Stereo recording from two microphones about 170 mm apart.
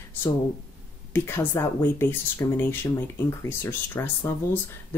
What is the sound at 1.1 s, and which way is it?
Speech, 15° left (ahead or behind).